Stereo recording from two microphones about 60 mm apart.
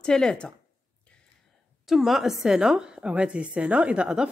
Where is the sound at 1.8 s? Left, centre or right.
Centre.